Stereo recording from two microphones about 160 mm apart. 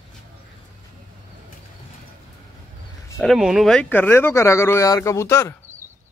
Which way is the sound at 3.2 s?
Centre (ahead or behind).